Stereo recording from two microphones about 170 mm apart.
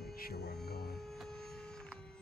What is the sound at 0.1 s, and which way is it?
Hum, 65° left (ahead or behind).